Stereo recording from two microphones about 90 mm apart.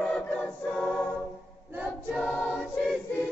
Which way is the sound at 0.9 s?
5° left (ahead or behind).